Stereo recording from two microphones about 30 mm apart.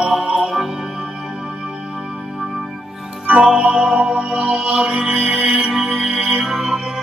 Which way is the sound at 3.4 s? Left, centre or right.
Right.